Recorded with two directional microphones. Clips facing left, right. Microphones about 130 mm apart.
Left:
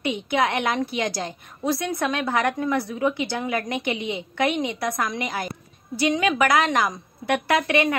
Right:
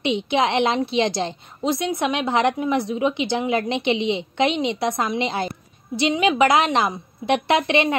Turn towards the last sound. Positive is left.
turn(degrees=-25)  # may be behind; listen again after turning